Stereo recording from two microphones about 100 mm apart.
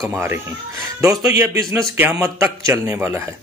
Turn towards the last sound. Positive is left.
turn(degrees=-25)  # may be behind; listen again after turning